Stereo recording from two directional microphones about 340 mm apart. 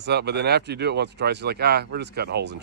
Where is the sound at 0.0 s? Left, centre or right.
Right.